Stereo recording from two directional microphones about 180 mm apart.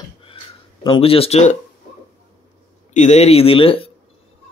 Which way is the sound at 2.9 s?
40° left (ahead or behind).